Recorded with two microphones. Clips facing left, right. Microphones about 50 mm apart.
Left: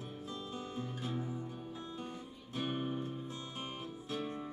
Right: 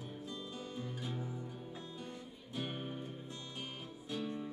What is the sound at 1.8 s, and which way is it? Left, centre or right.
Music, left.